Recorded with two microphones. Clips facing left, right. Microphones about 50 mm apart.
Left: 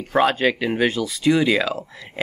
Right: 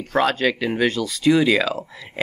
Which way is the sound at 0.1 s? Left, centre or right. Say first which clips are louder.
Left 1 dB; centre.